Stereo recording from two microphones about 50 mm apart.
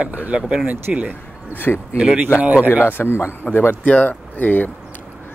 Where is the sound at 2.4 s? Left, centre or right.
Right.